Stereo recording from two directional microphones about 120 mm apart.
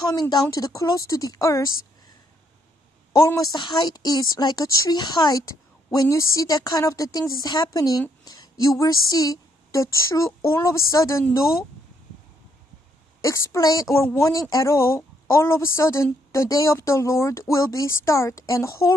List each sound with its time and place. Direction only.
0.1 s speech: 30° left (ahead or behind)
3.2 s a woman's voice: 30° left (ahead or behind)
13.2 s speech: 25° left (ahead or behind)